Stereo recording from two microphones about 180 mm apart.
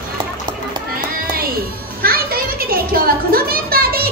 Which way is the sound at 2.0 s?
55° right (ahead or behind).